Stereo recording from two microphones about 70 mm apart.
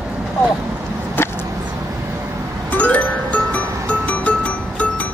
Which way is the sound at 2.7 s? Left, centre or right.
Left.